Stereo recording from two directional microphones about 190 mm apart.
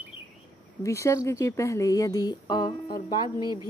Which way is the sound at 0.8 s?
15° left (ahead or behind).